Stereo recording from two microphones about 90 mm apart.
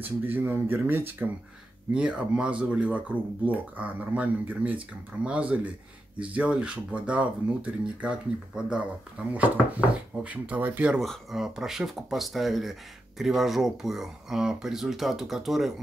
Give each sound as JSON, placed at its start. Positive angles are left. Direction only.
{"t": 0.0, "sound": "speech", "side_deg": -20}
{"t": 2.0, "sound": "speech", "side_deg": -10}
{"t": 11.0, "sound": "speech", "side_deg": 0}